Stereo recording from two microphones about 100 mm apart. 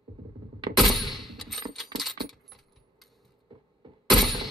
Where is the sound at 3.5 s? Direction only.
50° right (ahead or behind).